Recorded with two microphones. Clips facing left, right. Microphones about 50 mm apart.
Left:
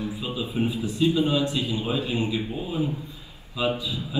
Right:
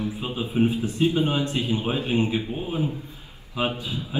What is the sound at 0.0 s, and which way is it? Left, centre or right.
A man's voice, right.